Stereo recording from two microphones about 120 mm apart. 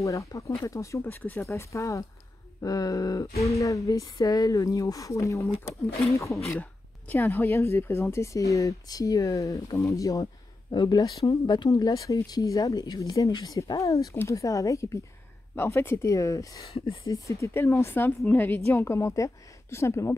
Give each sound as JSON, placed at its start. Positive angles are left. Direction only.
{"t": 0.0, "sound": "speech", "side_deg": 25}
{"t": 16.7, "sound": "speech", "side_deg": 45}
{"t": 17.1, "sound": "speech", "side_deg": 25}